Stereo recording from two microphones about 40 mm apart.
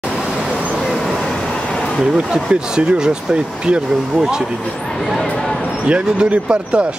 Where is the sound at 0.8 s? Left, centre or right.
Centre.